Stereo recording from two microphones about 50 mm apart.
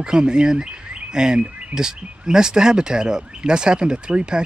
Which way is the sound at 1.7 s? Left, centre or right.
Centre.